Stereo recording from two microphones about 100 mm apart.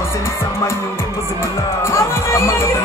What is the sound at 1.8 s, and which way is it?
Speech, 25° left (ahead or behind).